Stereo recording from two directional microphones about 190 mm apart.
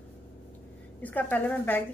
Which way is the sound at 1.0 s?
10° left (ahead or behind).